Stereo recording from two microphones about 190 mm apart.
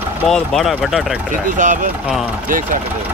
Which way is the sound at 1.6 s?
40° right (ahead or behind).